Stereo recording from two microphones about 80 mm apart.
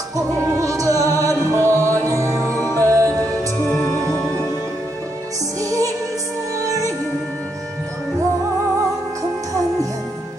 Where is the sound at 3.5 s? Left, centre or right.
Left.